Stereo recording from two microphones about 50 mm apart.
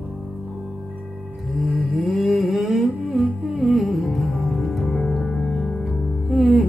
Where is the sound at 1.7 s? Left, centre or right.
Right.